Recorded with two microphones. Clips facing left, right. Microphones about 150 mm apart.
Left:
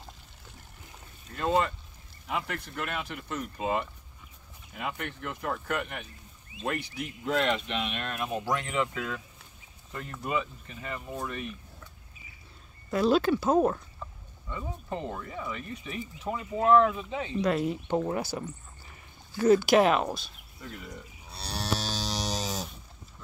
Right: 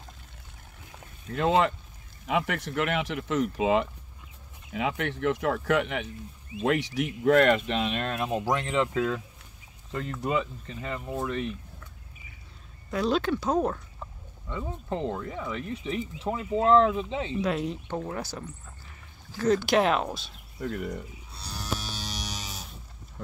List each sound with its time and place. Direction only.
1.3 s speech: 90° right; by 11.4 s 25° right (ahead or behind)
12.9 s speech: 5° left (ahead or behind)
14.5 s speech: 20° right (ahead or behind)
17.4 s speech: centre (ahead or behind)
17.8 s speech: 20° left (ahead or behind); by 20.2 s centre (ahead or behind)
20.5 s speech: 65° right (ahead or behind)
21.3 s livestock: 70° left (ahead or behind); by 22.7 s 90° left